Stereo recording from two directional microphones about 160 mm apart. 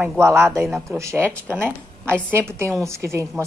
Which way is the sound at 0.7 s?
Centre (ahead or behind).